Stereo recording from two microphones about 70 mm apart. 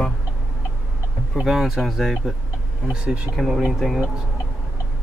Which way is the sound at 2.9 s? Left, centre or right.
Centre.